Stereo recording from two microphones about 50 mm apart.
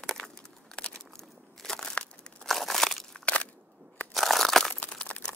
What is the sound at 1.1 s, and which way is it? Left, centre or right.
Crunch, centre.